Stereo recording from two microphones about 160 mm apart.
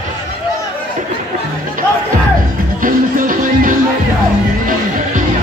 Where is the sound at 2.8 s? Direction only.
55° right (ahead or behind).